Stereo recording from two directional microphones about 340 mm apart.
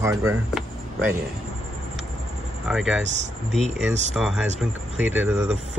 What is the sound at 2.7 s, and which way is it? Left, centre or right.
Speech, centre.